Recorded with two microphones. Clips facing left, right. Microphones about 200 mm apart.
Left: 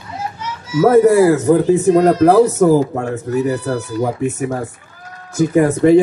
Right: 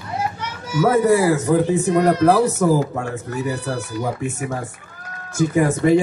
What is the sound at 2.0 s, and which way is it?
Speech, 40° left (ahead or behind).